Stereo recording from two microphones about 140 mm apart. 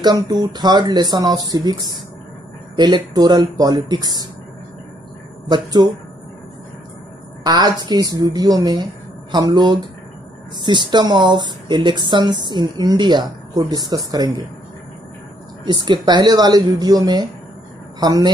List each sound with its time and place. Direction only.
0.0 s speech: 30° right (ahead or behind)
5.5 s speech: 30° right (ahead or behind)
7.4 s speech: 30° right (ahead or behind)
15.6 s speech: 30° right (ahead or behind)